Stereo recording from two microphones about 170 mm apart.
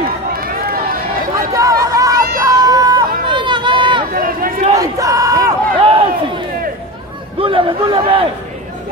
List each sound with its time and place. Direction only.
0.3 s run: 60° right (ahead or behind)
1.5 s crowd: 20° right (ahead or behind)
4.1 s run: 55° right (ahead or behind)
4.7 s crowd: 20° right (ahead or behind)
5.8 s a sound: 30° right (ahead or behind)